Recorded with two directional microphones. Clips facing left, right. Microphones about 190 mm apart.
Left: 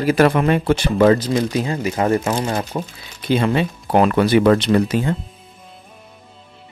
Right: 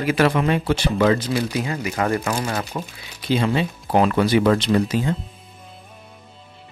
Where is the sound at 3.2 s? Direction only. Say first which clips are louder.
Left 3 dB; 55° left (ahead or behind).